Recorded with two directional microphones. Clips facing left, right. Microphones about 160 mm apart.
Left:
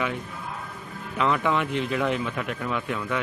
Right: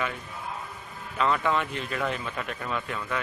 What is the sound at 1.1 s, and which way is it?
A man's voice, 10° left (ahead or behind).